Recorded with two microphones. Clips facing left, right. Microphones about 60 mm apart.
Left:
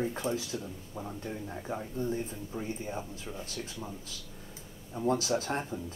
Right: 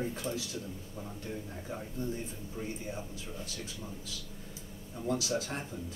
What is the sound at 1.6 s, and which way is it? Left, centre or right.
Speech, left.